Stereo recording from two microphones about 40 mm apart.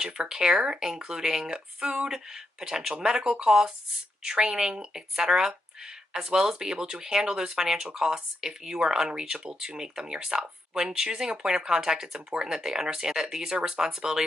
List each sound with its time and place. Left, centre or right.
0.0 s speech: centre
2.1 s speech: centre
4.5 s speech: centre